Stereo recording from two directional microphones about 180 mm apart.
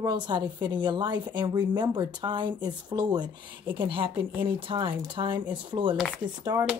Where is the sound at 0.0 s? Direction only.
25° right (ahead or behind).